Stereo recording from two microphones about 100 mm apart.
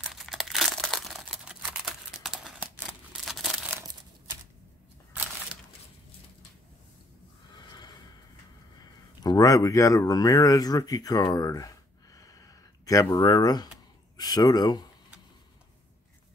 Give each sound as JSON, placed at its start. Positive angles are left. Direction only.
{"t": 0.1, "sound": "crumpling", "side_deg": 0}
{"t": 2.2, "sound": "scissors", "side_deg": -5}
{"t": 2.6, "sound": "scissors", "side_deg": -15}
{"t": 3.3, "sound": "crumpling", "side_deg": 0}
{"t": 5.1, "sound": "crushing", "side_deg": -20}
{"t": 7.5, "sound": "snort", "side_deg": 45}
{"t": 9.2, "sound": "speech", "side_deg": 40}
{"t": 12.2, "sound": "a sound", "side_deg": 35}
{"t": 14.1, "sound": "speech", "side_deg": 40}